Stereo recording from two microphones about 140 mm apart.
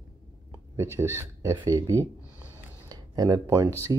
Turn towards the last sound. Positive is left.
turn(degrees=-20)  # may be behind; listen again after turning